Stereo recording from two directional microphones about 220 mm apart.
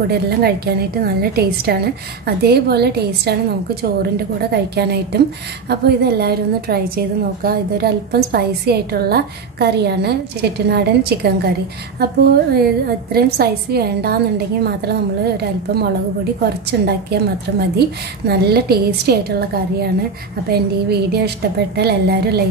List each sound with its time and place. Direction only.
0.1 s a woman's voice: 45° right (ahead or behind)